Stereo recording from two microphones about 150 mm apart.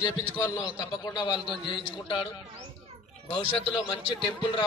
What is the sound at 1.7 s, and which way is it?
Speech, 35° left (ahead or behind).